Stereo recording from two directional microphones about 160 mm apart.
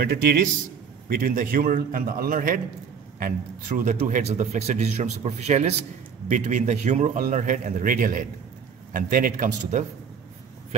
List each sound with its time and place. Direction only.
0.0 s a man's voice: 75° right (ahead or behind)
1.0 s a man's voice: 65° right (ahead or behind)